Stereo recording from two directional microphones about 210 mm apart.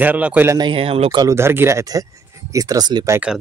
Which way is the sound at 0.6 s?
25° right (ahead or behind).